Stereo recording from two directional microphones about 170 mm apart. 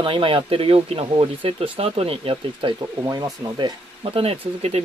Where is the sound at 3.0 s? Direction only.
20° right (ahead or behind); by 4.8 s 35° right (ahead or behind).